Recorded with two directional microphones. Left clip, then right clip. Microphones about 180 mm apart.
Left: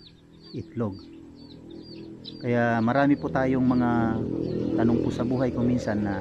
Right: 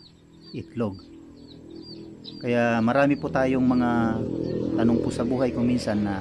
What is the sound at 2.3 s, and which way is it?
A man's voice, 5° right (ahead or behind).